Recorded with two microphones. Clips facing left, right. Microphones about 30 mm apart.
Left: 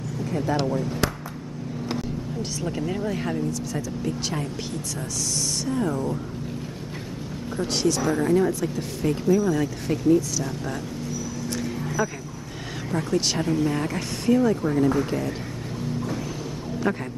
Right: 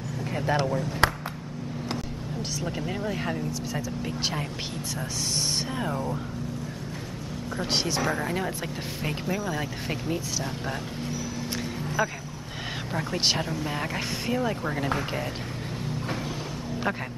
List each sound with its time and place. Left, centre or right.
0.2 s vehicle: right
2.6 s speech: centre
5.7 s speech: right
7.6 s speech: right
12.0 s speech: right
16.9 s speech: centre